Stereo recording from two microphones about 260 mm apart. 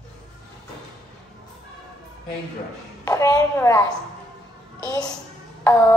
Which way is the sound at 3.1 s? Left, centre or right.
Centre.